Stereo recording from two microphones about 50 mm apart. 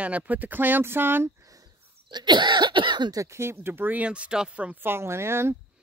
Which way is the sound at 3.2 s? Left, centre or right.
Right.